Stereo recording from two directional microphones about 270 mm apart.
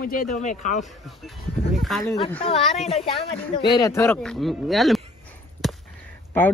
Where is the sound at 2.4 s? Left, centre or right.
Left.